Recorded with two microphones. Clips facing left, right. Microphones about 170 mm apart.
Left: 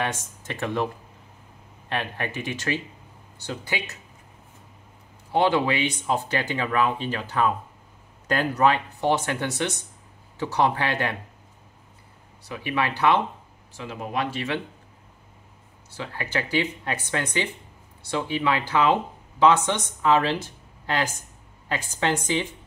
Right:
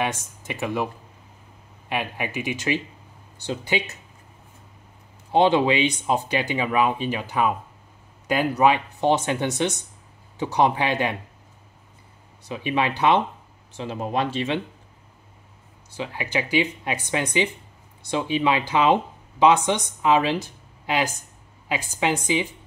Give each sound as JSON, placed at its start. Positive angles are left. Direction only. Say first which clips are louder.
{"t": 0.0, "sound": "speech", "louder": "right 2 dB", "side_deg": -10}
{"t": 1.9, "sound": "speech", "louder": "right 1 dB", "side_deg": -10}
{"t": 5.3, "sound": "speech", "louder": "right 3 dB", "side_deg": -20}
{"t": 12.4, "sound": "speech", "louder": "right 3 dB", "side_deg": -20}
{"t": 15.9, "sound": "speech", "louder": "right 2 dB", "side_deg": -15}